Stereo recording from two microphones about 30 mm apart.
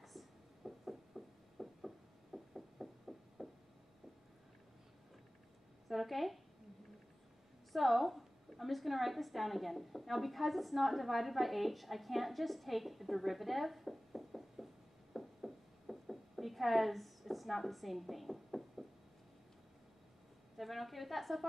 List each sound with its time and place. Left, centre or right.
0.0 s a sound: centre
5.9 s speech: centre
7.7 s a woman's voice: centre
15.1 s knock: centre
20.5 s a woman's voice: centre